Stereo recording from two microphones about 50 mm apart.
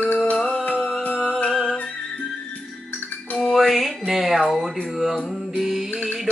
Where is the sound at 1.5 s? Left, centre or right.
Centre.